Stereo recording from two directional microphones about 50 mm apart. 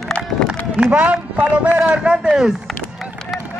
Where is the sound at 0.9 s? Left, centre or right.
Right.